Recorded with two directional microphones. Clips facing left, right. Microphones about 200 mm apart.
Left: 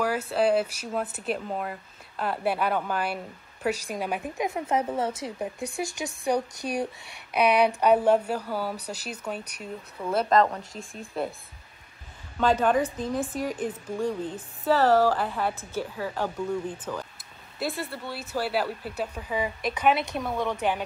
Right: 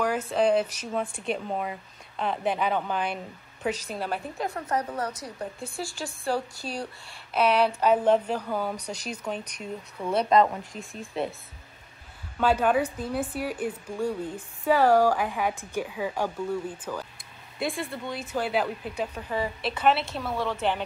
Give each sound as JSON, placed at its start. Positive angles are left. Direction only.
{"t": 0.0, "sound": "speech", "side_deg": 5}
{"t": 12.4, "sound": "speech", "side_deg": -10}
{"t": 17.6, "sound": "speech", "side_deg": 5}